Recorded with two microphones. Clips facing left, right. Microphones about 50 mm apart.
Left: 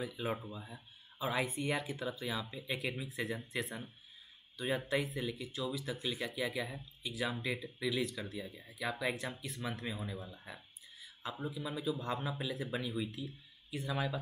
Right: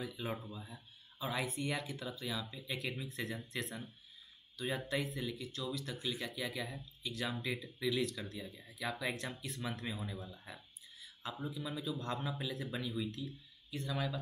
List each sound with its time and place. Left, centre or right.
0.0 s speech: centre